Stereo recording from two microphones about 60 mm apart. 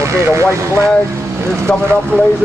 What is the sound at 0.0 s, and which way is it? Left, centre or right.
Speech, right.